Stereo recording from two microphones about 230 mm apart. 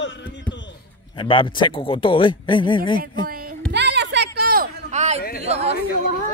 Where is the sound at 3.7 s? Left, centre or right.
Right.